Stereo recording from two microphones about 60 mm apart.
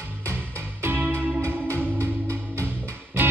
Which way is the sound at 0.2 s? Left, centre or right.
Right.